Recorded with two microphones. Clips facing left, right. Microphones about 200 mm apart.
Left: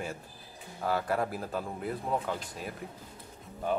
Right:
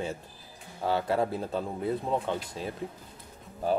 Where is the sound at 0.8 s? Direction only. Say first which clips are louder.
Right 3 dB; 25° right (ahead or behind).